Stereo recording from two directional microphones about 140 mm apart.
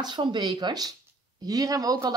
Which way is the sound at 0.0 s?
30° right (ahead or behind).